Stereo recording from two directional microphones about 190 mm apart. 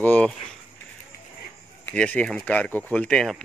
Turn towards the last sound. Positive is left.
turn(degrees=0)  # may be behind; listen again after turning